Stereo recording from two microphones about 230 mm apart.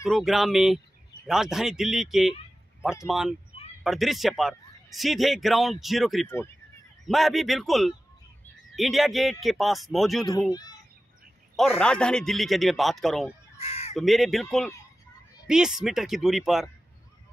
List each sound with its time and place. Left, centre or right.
0.0 s a man's voice: centre
10.5 s a child's voice: centre
11.5 s a man's voice: centre
13.6 s crow: left
13.9 s a man's voice: centre